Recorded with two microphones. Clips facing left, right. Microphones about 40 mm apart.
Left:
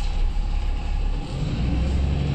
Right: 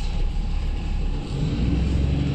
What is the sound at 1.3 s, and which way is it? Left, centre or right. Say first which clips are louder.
Vehicle: right 3 dB; centre.